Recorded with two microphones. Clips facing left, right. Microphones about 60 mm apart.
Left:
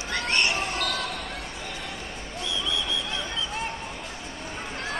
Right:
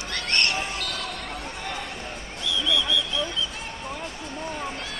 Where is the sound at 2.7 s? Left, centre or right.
Left.